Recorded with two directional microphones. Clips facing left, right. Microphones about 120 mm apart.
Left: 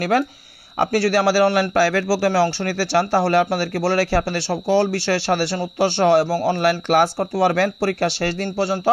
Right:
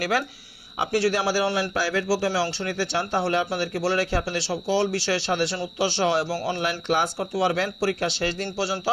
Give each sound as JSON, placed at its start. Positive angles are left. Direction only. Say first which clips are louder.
{"t": 0.7, "sound": "a man's voice", "louder": "left 5 dB", "side_deg": 65}